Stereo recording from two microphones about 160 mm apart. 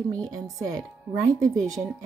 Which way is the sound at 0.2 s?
20° right (ahead or behind).